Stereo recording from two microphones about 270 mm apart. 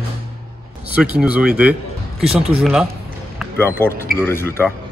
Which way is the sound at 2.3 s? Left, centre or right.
Right.